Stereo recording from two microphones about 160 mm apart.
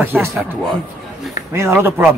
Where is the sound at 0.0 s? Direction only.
10° right (ahead or behind).